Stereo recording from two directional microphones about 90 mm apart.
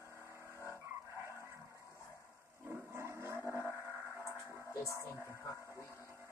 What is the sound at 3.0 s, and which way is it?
Vehicle, 30° right (ahead or behind).